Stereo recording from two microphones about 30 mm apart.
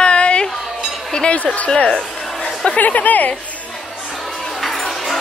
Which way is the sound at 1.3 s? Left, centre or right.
Left.